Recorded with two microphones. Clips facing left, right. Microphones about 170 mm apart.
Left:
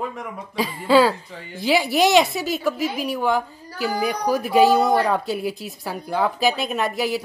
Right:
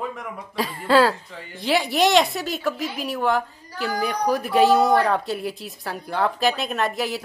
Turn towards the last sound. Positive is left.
turn(degrees=0)  # may be behind; listen again after turning